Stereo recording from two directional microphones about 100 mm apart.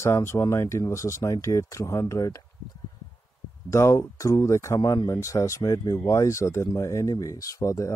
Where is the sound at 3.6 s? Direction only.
30° left (ahead or behind).